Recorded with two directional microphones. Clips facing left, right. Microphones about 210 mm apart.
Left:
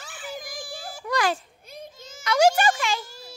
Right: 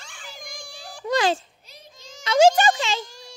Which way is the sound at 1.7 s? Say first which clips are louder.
Left 9 dB; 50° left (ahead or behind).